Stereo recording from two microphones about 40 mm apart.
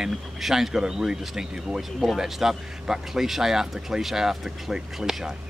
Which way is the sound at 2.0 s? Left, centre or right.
Centre.